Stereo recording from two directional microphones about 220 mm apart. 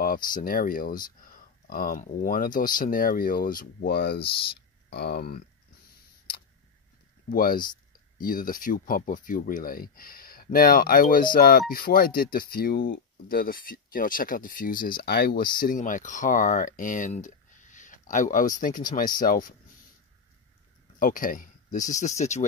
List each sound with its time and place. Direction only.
0.0 s speech: 40° left (ahead or behind)
4.2 s speech: 25° left (ahead or behind)
4.8 s speech: 50° left (ahead or behind)
7.2 s speech: 40° left (ahead or behind)
21.0 s speech: 40° left (ahead or behind)